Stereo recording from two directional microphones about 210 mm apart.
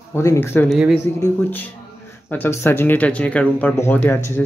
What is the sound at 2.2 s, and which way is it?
Speech, 10° left (ahead or behind).